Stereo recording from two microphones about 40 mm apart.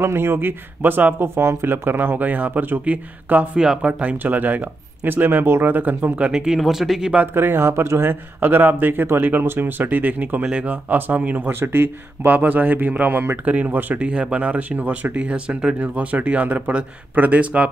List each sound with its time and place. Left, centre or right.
0.0 s speech: right
1.2 s speech: right
2.8 s speech: right
3.5 s speech: centre
3.8 s speech: right
4.2 s speech: right
5.1 s speech: right
6.3 s speech: centre
6.6 s speech: centre
7.3 s speech: right
9.4 s speech: right
11.6 s speech: right
12.3 s speech: right
13.9 s speech: right